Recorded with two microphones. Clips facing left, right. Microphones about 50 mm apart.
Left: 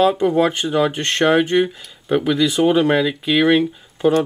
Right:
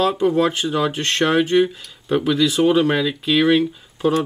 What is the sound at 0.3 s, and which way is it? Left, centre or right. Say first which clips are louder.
Speech: left 1 dB; centre.